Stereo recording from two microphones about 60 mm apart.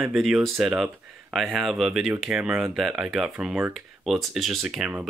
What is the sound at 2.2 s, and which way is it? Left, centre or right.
Speech, centre.